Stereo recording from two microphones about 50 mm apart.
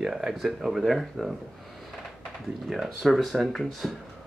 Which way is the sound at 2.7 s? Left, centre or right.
Centre.